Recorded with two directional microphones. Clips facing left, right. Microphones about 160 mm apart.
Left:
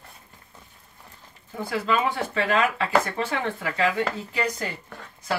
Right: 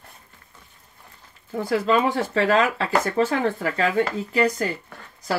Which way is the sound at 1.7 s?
35° right (ahead or behind).